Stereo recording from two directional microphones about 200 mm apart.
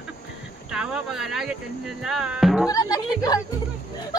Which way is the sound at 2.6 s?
20° left (ahead or behind).